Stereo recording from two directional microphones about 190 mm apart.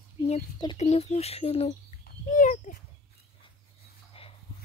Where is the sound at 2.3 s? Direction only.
45° left (ahead or behind).